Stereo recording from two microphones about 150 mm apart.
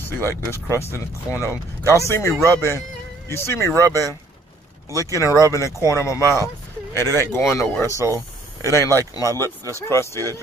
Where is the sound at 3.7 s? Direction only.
20° right (ahead or behind).